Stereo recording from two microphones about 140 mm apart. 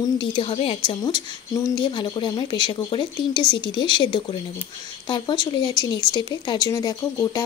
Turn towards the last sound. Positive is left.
turn(degrees=25)  # may be behind; listen again after turning